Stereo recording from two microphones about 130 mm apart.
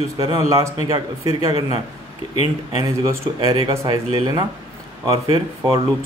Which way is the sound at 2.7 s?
30° right (ahead or behind).